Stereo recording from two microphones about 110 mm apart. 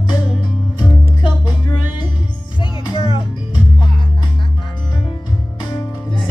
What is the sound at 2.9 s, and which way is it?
Music, 55° left (ahead or behind).